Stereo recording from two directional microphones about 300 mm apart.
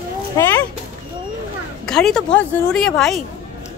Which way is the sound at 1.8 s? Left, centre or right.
Centre.